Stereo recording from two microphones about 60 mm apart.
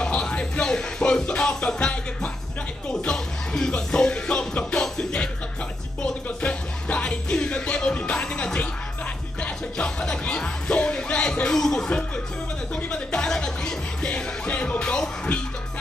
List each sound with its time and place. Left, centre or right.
0.0 s music: centre
6.2 s music: centre
11.4 s speech: centre
12.9 s music: centre